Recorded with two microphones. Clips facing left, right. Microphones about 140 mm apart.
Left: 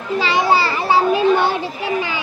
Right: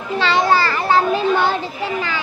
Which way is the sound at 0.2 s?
5° left (ahead or behind).